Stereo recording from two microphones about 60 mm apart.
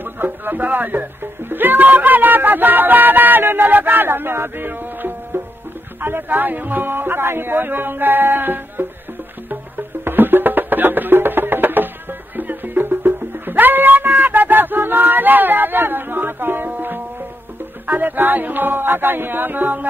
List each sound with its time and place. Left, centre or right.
0.0 s music: right
5.9 s speech: right
9.5 s music: right